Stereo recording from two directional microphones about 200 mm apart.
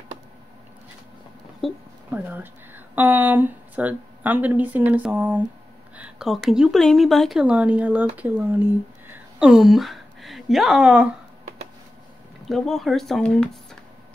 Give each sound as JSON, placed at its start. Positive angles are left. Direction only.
{"t": 1.6, "sound": "speech", "side_deg": 0}
{"t": 12.4, "sound": "speech", "side_deg": 0}